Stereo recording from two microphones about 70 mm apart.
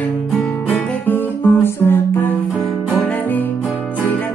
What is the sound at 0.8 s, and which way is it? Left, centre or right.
Guitar, left.